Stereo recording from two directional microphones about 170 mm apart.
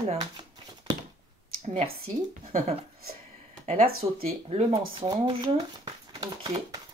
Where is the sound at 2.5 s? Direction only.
40° right (ahead or behind).